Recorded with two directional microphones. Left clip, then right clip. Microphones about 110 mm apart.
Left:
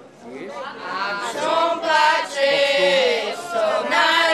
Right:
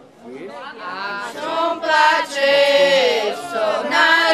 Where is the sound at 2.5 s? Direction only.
75° left (ahead or behind).